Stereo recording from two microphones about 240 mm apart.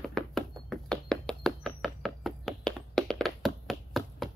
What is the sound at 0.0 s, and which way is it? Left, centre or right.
Knock, centre.